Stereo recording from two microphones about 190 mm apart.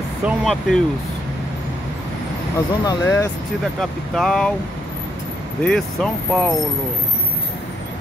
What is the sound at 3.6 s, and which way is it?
Speech, centre (ahead or behind).